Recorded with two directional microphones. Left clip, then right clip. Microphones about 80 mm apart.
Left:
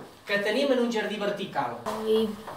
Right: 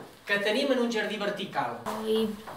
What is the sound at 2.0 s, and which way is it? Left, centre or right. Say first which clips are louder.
Speech: left 3 dB; centre.